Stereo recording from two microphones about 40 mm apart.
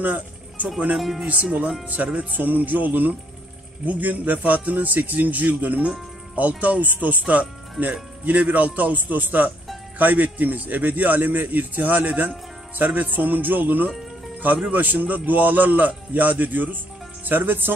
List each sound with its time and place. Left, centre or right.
0.0 s music: right
0.9 s speech: centre
1.2 s speech: right
2.1 s a man's voice: right